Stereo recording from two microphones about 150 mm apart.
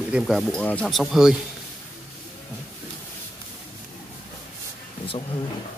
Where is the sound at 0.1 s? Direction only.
Centre (ahead or behind).